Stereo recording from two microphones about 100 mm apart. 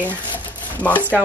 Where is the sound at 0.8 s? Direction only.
15° left (ahead or behind).